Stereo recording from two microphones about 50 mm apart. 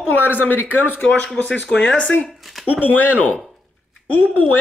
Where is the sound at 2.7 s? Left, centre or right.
Left.